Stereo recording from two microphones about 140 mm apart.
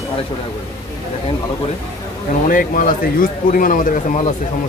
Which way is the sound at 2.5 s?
75° left (ahead or behind).